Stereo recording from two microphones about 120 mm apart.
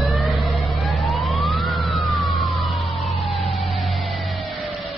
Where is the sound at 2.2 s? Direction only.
Centre (ahead or behind).